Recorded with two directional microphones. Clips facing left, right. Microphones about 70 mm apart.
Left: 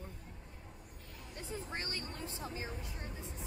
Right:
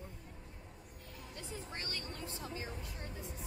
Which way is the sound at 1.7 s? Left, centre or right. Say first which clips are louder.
Left 3 dB; left.